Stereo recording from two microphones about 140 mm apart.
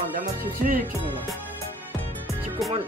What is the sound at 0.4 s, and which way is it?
Music, 90° right.